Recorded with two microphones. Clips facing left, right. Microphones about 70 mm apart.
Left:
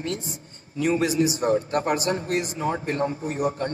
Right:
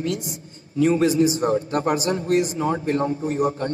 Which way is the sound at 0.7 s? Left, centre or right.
Right.